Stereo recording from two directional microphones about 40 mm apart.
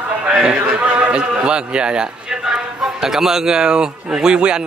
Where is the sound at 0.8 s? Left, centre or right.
Right.